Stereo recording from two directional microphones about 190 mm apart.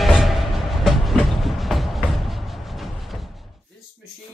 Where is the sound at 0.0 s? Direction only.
Centre (ahead or behind).